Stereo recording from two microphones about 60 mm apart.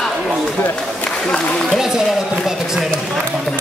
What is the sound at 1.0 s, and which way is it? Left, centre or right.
Speech, centre.